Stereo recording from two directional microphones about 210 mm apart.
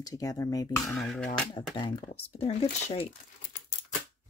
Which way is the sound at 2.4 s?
30° left (ahead or behind).